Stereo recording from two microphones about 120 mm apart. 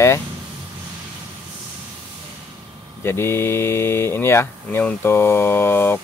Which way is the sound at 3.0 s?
20° left (ahead or behind).